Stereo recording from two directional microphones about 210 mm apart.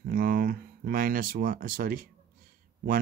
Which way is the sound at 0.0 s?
45° right (ahead or behind).